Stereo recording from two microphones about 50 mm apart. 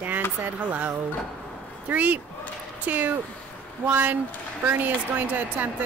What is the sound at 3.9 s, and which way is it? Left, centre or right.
Speech, right.